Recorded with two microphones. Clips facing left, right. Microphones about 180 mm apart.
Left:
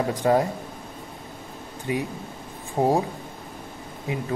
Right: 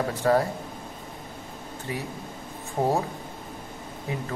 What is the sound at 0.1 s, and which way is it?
Speech, 15° left (ahead or behind).